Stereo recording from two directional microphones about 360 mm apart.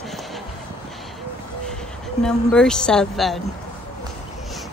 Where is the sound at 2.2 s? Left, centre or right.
Centre.